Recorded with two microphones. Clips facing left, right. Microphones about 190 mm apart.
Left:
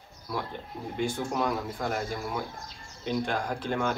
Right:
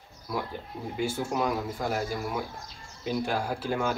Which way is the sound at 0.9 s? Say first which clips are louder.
Even; 5° right (ahead or behind).